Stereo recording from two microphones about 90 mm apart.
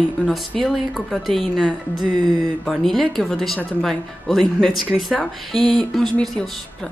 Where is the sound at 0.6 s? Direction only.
Centre (ahead or behind).